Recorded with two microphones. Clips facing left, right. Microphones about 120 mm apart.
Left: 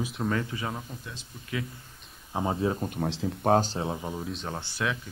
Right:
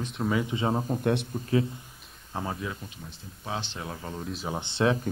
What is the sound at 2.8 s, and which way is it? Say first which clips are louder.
Speech: left 14 dB; 55° left (ahead or behind).